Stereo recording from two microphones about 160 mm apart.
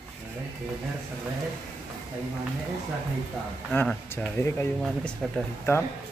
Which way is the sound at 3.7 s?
10° left (ahead or behind).